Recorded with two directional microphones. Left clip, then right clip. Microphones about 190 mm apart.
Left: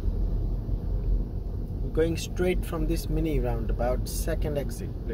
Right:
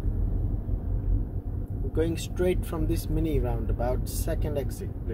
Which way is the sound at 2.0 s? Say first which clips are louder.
Left 2 dB; 55° left (ahead or behind).